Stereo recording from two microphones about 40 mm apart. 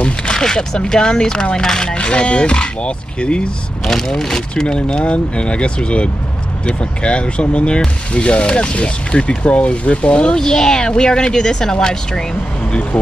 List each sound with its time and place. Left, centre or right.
0.0 s speech: left
3.8 s speech: centre